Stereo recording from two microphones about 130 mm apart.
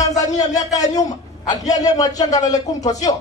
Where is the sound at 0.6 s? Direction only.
25° left (ahead or behind).